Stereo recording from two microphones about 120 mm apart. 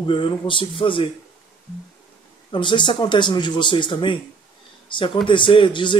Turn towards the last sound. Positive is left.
turn(degrees=45)  # may be behind; listen again after turning